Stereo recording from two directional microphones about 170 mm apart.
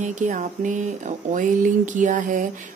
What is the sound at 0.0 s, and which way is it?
Speech, 45° right (ahead or behind).